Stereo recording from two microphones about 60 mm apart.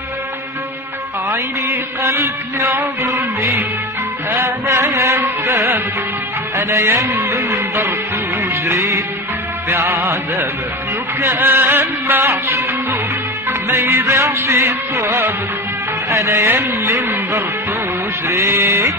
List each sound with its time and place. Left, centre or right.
2.0 s music: right
3.0 s music: right
7.0 s music: right
9.7 s music: right
11.3 s a sound: right
13.5 s music: right
18.5 s music: right